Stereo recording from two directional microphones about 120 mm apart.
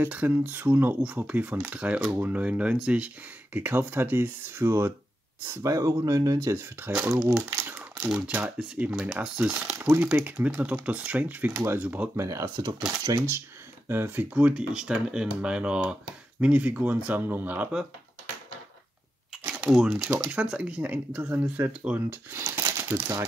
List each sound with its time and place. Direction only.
0.0 s speech: 15° right (ahead or behind)
7.4 s crumpling: 20° right (ahead or behind)
8.0 s speech: 15° right (ahead or behind)
12.2 s speech: 25° right (ahead or behind)
19.3 s a sound: 5° right (ahead or behind)
20.0 s speech: 25° right (ahead or behind)
20.2 s speech: 10° right (ahead or behind)
22.4 s crumpling: 25° right (ahead or behind)